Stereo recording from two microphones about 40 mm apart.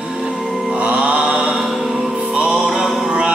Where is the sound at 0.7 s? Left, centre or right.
Right.